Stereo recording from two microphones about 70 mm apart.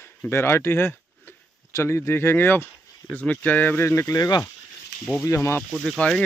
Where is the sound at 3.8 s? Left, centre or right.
Left.